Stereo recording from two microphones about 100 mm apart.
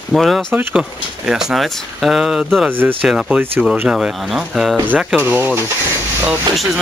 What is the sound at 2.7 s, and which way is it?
Speech, 20° right (ahead or behind).